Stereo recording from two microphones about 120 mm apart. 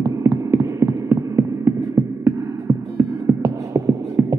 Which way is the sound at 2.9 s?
25° right (ahead or behind).